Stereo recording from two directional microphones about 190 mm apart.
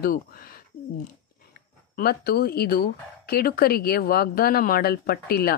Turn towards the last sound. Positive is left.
turn(degrees=55)  # may be behind; listen again after turning